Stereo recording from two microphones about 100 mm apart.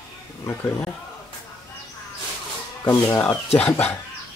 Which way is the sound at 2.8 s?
25° left (ahead or behind).